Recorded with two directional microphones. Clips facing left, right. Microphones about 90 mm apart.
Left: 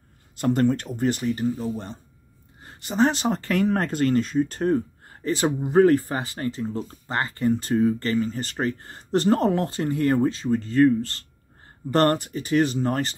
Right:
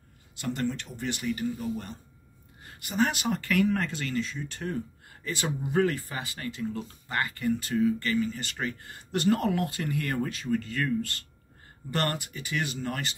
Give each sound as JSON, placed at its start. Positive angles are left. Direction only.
{"t": 0.4, "sound": "speech", "side_deg": 45}